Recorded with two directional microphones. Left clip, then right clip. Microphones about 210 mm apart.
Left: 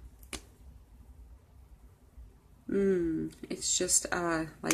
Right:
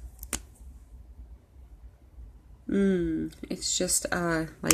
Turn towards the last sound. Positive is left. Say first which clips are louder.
# right 3 dB
turn(degrees=-35)  # may be behind; listen again after turning